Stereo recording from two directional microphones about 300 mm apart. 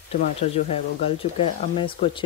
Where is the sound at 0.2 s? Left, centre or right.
Left.